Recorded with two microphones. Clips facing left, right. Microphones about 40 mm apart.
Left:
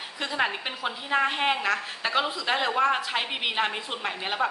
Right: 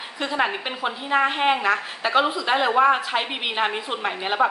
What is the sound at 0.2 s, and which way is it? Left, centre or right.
A woman's voice, centre.